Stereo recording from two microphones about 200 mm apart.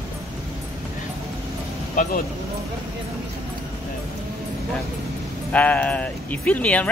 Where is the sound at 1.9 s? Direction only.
40° left (ahead or behind).